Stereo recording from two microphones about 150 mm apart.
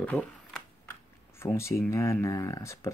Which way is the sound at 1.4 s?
20° left (ahead or behind).